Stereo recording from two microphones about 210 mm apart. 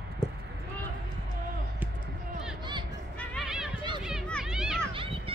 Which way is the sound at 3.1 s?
Centre (ahead or behind).